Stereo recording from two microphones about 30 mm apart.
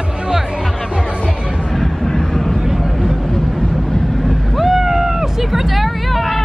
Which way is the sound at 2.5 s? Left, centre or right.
Centre.